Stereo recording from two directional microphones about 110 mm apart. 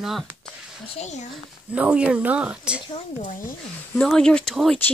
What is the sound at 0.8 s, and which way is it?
Speech, 85° left.